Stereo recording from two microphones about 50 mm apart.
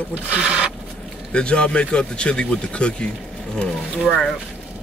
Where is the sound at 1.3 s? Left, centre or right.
Centre.